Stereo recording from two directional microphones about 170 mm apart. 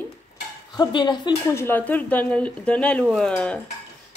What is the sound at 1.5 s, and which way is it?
Speech, 15° left (ahead or behind).